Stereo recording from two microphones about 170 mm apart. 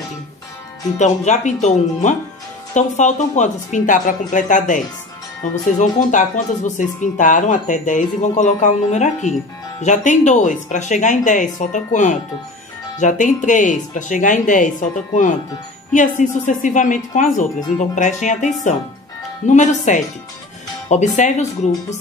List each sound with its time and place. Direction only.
0.9 s speech: 45° left (ahead or behind)